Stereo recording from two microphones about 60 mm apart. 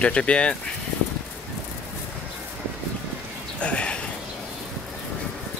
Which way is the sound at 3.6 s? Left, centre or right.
Centre.